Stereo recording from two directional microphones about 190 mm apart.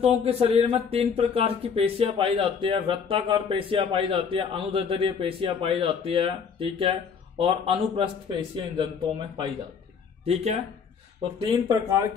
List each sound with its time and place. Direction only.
0.0 s speech: 30° right (ahead or behind)